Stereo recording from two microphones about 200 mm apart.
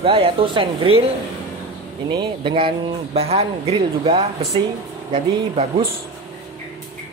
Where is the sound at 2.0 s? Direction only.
25° right (ahead or behind).